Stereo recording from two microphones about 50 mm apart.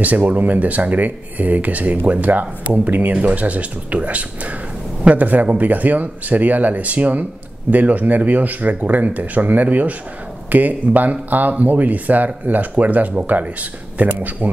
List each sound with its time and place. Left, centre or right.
0.0 s speech: right